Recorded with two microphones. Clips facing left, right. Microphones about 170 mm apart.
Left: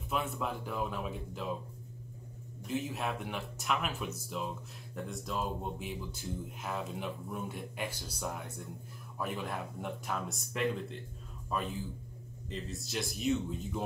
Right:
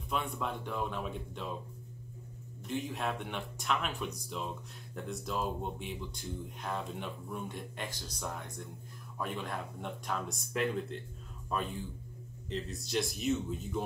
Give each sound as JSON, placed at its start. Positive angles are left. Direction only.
{"t": 0.1, "sound": "speech", "side_deg": 5}
{"t": 2.6, "sound": "speech", "side_deg": 0}